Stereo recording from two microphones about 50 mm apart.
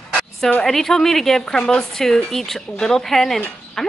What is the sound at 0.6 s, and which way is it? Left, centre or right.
A woman's voice, centre.